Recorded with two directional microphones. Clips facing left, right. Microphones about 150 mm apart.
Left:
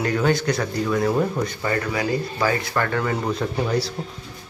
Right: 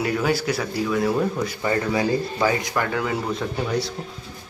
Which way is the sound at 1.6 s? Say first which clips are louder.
Right 4 dB; 20° right (ahead or behind).